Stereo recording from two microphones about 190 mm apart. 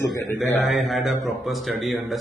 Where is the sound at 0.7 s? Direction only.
Centre (ahead or behind).